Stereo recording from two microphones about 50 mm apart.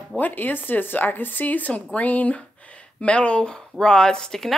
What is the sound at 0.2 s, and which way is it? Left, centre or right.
Speech, left.